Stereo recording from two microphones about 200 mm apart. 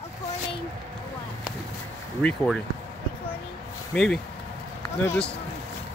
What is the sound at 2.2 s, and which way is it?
Speech, centre (ahead or behind).